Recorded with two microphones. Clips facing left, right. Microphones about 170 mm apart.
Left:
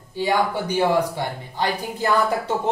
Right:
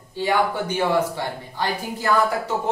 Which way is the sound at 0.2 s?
15° left (ahead or behind).